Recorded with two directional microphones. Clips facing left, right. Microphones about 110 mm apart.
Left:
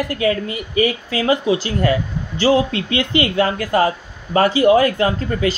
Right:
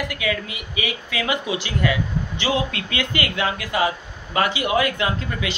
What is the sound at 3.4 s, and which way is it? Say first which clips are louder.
Speech: left 5 dB; 40° left (ahead or behind).